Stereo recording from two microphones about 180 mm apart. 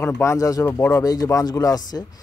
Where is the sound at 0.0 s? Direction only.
10° left (ahead or behind).